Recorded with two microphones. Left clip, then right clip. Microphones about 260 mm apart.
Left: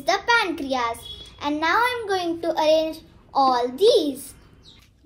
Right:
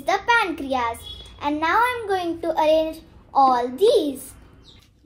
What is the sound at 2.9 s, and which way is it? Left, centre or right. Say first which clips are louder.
A child's voice: right 3 dB; centre.